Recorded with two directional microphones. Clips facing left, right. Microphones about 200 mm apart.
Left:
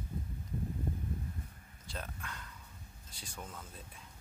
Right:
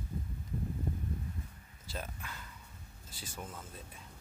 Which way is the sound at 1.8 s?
5° right (ahead or behind).